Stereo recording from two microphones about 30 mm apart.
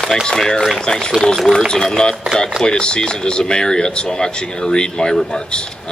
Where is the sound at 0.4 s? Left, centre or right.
Centre.